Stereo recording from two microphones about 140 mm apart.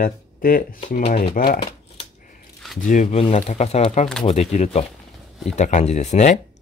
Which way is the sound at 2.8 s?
65° left (ahead or behind).